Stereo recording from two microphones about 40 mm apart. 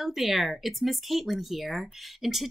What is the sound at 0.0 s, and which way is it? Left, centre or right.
Speech, centre.